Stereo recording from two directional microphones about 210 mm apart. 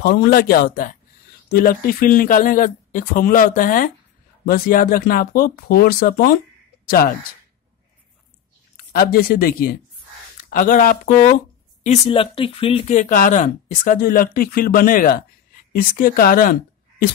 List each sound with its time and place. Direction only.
0.0 s speech: 50° left (ahead or behind)
8.7 s speech: 45° left (ahead or behind)